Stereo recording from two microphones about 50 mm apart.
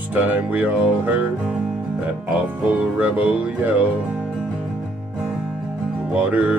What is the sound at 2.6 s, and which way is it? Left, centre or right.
Music, right.